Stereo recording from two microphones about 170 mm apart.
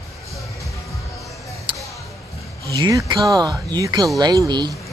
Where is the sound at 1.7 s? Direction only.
30° right (ahead or behind).